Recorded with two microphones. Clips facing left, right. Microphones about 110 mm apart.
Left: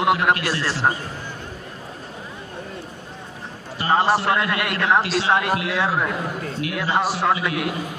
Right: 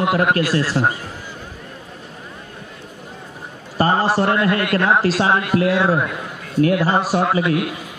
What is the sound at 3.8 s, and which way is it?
A man's voice, 40° right (ahead or behind).